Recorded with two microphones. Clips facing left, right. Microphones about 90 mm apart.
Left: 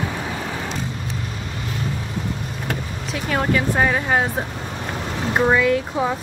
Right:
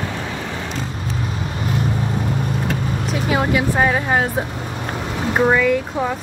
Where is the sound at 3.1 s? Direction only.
5° right (ahead or behind).